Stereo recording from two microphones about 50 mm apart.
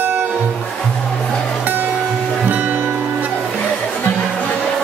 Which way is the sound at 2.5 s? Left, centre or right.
Right.